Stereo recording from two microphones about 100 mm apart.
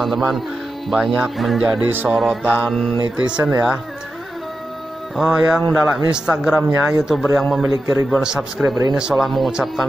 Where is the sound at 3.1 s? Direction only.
10° right (ahead or behind).